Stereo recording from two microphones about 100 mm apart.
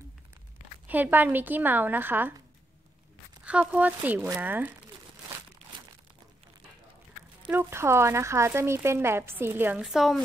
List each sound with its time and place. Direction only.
0.8 s speech: 15° right (ahead or behind)
3.4 s speech: 15° right (ahead or behind)
7.4 s speech: 25° right (ahead or behind)
9.8 s speech: 5° right (ahead or behind)